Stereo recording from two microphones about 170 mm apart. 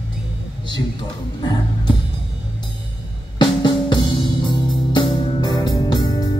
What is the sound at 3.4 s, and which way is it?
Music, 25° left (ahead or behind).